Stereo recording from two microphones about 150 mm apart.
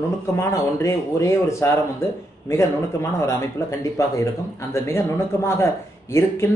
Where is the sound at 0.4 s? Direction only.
20° left (ahead or behind).